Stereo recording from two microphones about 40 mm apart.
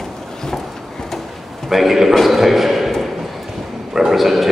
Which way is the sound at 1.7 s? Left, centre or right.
Centre.